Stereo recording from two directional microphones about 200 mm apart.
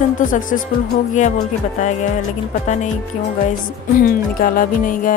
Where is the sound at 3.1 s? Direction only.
40° left (ahead or behind).